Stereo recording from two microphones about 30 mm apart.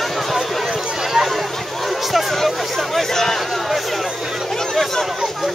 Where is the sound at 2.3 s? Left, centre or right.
Centre.